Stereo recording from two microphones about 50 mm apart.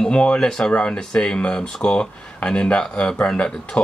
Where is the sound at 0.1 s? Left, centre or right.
Left.